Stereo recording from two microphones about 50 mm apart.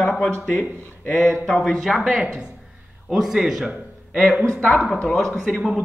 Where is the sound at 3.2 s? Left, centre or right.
Centre.